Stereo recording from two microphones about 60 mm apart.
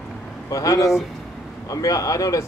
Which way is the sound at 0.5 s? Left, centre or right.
Left.